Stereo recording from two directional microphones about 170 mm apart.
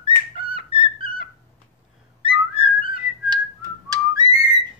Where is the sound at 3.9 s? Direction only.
20° right (ahead or behind).